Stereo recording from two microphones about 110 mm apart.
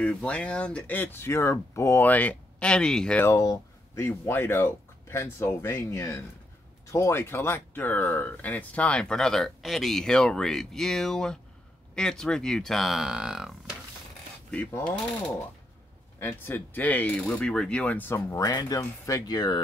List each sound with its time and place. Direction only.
0.0 s speech: 10° left (ahead or behind)
3.2 s speech: 30° left (ahead or behind); by 13.5 s 5° right (ahead or behind)
16.2 s speech: 20° left (ahead or behind)
18.4 s speech: 35° left (ahead or behind)